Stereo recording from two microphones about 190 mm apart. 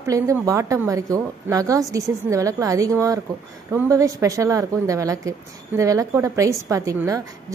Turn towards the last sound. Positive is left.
turn(degrees=-15)  # may be behind; listen again after turning